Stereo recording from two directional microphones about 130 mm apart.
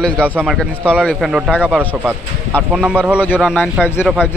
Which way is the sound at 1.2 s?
5° right (ahead or behind).